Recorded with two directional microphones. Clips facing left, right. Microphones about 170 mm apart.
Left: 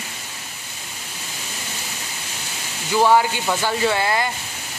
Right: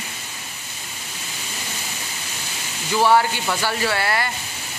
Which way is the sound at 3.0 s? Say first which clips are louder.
Left 1 dB; 15° left (ahead or behind).